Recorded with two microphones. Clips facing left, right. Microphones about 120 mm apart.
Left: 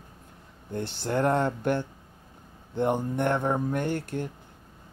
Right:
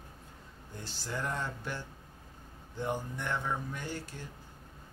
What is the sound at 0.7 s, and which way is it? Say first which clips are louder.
Speech: left 12 dB; 60° left (ahead or behind).